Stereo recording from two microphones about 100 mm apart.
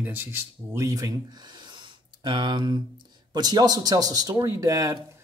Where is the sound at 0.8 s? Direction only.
35° right (ahead or behind).